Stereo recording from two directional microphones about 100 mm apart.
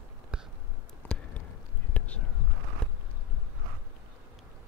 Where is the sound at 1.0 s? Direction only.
15° left (ahead or behind).